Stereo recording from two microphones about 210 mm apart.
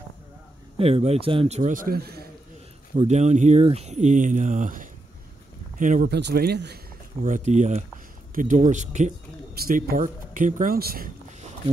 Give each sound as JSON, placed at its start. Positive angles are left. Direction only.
{"t": 0.7, "sound": "speech", "side_deg": -30}
{"t": 3.0, "sound": "speech", "side_deg": -35}
{"t": 6.1, "sound": "speech", "side_deg": -50}
{"t": 7.2, "sound": "speech", "side_deg": -35}